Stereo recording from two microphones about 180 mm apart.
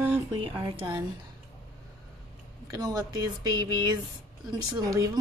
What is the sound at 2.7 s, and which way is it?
Speech, 20° right (ahead or behind).